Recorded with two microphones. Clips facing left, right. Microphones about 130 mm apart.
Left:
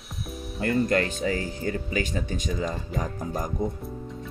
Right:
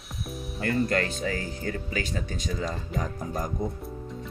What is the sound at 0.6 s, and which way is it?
Speech, 30° left (ahead or behind).